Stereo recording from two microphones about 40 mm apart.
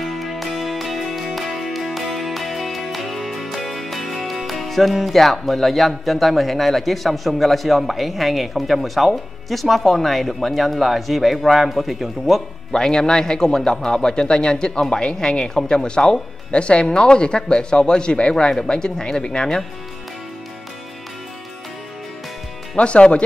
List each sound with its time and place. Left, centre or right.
0.0 s music: centre
12.7 s speech: centre
22.8 s speech: left